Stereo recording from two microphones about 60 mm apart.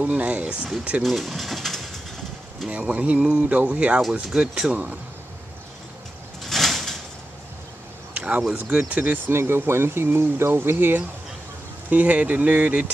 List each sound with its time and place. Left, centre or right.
0.0 s speech: right
1.0 s speech: centre
2.7 s speech: right
6.4 s a sound: centre
8.1 s a sound: right
8.8 s speech: right
9.3 s speech: right
11.9 s speech: right